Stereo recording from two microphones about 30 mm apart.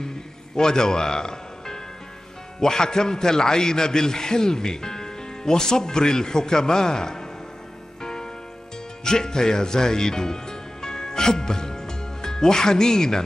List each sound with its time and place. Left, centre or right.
0.6 s a man's voice: left
8.0 s music: left
9.0 s speech: left